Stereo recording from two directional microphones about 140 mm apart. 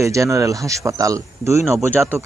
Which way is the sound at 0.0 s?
20° right (ahead or behind).